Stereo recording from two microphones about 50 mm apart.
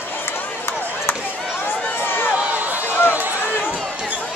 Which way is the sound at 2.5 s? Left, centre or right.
Right.